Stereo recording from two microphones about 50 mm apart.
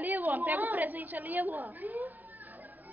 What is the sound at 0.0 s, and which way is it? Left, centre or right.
A woman's voice, right.